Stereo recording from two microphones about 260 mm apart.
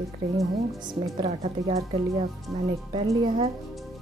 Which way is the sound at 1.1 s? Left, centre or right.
Right.